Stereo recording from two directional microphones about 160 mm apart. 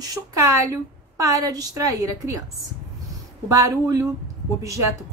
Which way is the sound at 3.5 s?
20° right (ahead or behind).